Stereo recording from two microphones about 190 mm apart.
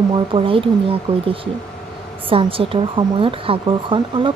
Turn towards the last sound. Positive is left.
turn(degrees=-25)  # may be behind; listen again after turning